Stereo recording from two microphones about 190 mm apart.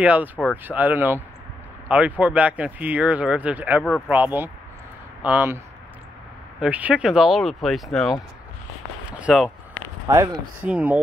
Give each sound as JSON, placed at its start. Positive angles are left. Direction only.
{"t": 0.0, "sound": "speech", "side_deg": -10}
{"t": 6.6, "sound": "speech", "side_deg": -5}
{"t": 9.2, "sound": "speech", "side_deg": 0}
{"t": 10.0, "sound": "speech", "side_deg": -15}